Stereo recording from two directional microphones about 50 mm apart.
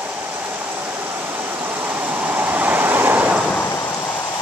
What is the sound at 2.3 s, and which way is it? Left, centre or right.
Vehicle, right.